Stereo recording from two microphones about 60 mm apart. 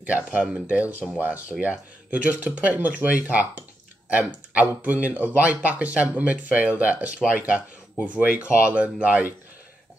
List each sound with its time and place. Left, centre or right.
0.0 s speech: right